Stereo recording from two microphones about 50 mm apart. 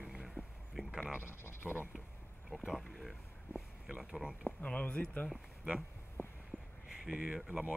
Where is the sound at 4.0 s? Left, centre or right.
Centre.